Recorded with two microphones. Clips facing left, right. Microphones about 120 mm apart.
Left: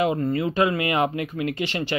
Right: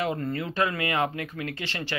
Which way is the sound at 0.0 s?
15° left (ahead or behind).